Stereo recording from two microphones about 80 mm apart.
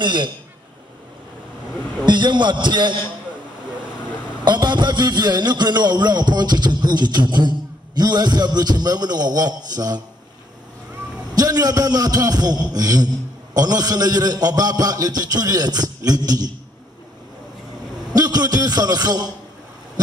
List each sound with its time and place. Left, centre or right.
0.0 s a man's voice: right
2.0 s a man's voice: right
4.5 s a man's voice: right
11.3 s a man's voice: right
18.1 s a man's voice: right